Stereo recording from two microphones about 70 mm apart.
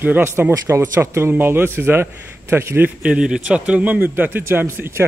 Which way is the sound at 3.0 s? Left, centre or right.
Centre.